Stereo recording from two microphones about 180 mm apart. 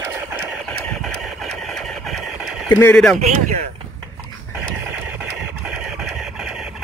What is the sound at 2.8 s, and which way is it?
Speech, 5° left (ahead or behind).